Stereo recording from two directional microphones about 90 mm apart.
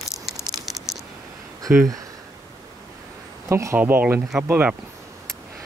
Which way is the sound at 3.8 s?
20° right (ahead or behind).